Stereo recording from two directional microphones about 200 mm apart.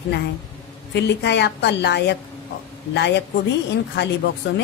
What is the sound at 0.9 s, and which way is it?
Speech, 60° left (ahead or behind).